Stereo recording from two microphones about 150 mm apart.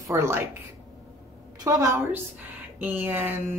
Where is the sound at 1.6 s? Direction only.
20° right (ahead or behind).